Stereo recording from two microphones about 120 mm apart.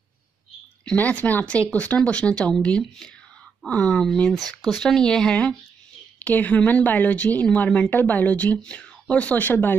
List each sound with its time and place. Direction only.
0.8 s speech: 10° left (ahead or behind)